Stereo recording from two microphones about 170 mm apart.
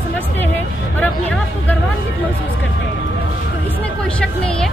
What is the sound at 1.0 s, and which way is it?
Music, 10° left (ahead or behind).